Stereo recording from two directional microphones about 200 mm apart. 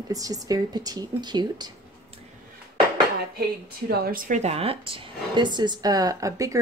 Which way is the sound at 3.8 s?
45° right (ahead or behind).